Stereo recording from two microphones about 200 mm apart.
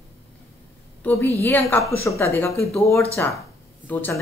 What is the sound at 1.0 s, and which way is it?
A woman's voice, 10° left (ahead or behind).